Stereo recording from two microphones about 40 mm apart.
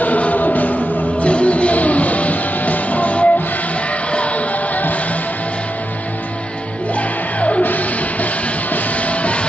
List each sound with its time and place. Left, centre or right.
0.0 s music: left
7.3 s music: left
7.6 s music: left